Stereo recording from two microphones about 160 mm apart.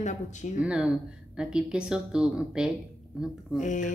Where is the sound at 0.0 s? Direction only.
45° left (ahead or behind).